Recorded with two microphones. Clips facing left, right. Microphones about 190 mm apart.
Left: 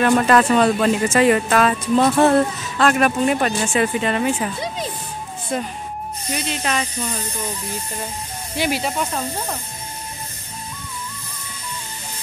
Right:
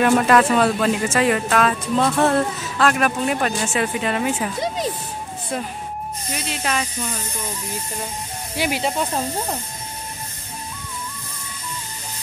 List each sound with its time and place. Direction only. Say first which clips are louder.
0.0 s speech: even; 5° right (ahead or behind)
5.5 s speech: left 2 dB; 5° right (ahead or behind)
8.5 s speech: left 2 dB; 10° right (ahead or behind)
8.8 s speech: right 1 dB; 25° right (ahead or behind)